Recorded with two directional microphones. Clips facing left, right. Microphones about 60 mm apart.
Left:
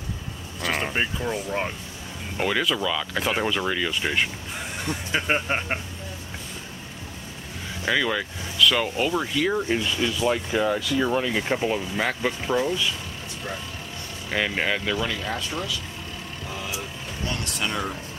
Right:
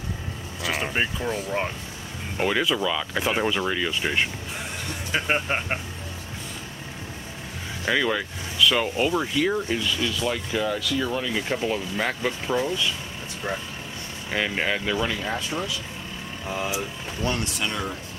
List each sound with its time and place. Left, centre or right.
0.6 s vehicle: centre
1.1 s speech: centre
7.8 s speech: centre
9.7 s speech: left
12.0 s speech: centre
14.3 s speech: centre
15.0 s speech: centre
16.4 s speech: right
17.6 s speech: centre